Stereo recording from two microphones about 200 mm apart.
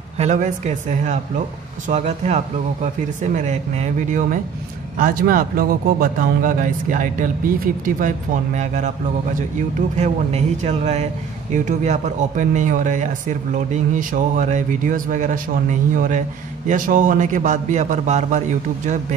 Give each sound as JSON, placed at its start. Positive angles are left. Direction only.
{"t": 0.2, "sound": "speech", "side_deg": -35}